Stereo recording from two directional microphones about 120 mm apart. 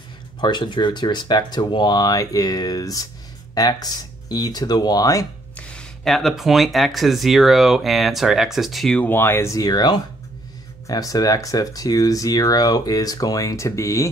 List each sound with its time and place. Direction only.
0.4 s speech: 40° left (ahead or behind)
5.6 s speech: 10° left (ahead or behind); by 14.0 s 25° left (ahead or behind)